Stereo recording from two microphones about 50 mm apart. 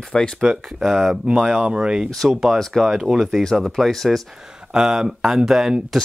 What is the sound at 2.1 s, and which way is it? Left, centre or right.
Speech, centre.